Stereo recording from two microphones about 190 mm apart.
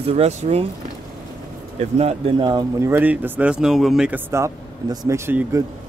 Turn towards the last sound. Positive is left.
turn(degrees=-15)  # may be behind; listen again after turning